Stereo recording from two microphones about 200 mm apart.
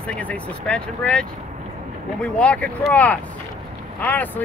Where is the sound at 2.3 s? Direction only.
5° left (ahead or behind).